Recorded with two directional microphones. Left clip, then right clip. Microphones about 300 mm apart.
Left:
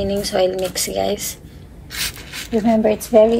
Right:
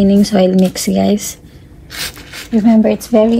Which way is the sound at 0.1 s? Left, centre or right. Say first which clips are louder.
Right 6 dB; centre.